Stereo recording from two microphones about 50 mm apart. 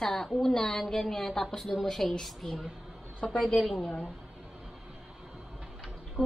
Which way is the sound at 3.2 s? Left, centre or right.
Centre.